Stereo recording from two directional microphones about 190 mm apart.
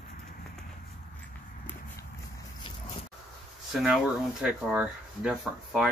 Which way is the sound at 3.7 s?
Centre (ahead or behind).